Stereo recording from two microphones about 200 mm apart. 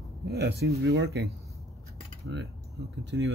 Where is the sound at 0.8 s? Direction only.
70° right (ahead or behind).